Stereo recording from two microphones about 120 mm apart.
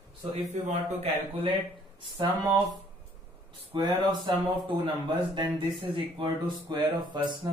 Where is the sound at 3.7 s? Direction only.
35° right (ahead or behind).